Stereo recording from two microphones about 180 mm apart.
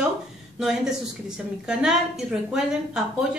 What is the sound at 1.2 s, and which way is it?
A woman's voice, 5° right (ahead or behind).